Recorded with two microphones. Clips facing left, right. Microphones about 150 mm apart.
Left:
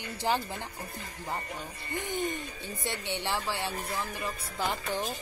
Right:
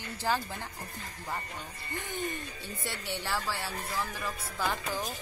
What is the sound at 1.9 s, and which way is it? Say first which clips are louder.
A woman's voice: left 4 dB; 15° left (ahead or behind).